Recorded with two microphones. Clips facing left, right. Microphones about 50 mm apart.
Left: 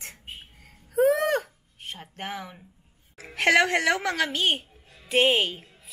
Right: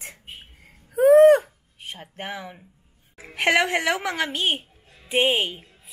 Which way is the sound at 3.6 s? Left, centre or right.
Centre.